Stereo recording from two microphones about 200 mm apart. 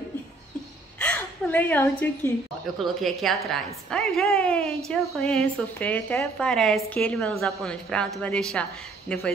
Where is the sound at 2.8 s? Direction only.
Centre (ahead or behind).